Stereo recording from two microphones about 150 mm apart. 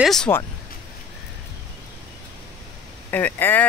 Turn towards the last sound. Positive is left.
turn(degrees=10)  # may be behind; listen again after turning